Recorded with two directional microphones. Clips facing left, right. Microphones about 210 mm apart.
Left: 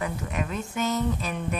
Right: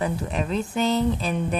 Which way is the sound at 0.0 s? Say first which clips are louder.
Right 4 dB; 30° right (ahead or behind).